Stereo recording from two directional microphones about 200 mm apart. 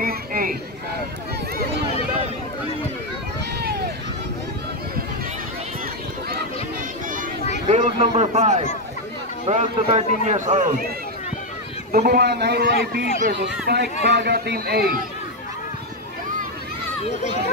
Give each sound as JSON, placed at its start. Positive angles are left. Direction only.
{"t": 0.0, "sound": "a sound", "side_deg": -45}
{"t": 7.6, "sound": "a man's voice", "side_deg": -30}
{"t": 11.9, "sound": "a man's voice", "side_deg": -50}
{"t": 17.0, "sound": "speech", "side_deg": 35}